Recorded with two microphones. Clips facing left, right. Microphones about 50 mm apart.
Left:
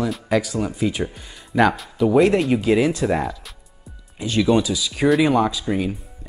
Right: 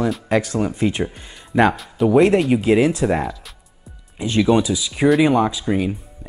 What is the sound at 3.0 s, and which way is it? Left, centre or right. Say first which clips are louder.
Speech: right 1 dB; centre.